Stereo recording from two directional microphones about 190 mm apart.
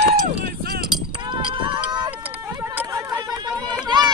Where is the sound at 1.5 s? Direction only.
25° right (ahead or behind).